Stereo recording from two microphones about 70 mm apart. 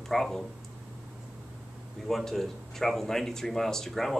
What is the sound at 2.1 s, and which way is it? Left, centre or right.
Speech, centre.